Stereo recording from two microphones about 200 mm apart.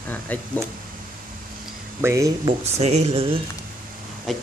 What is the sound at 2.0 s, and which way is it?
Speech, 15° right (ahead or behind).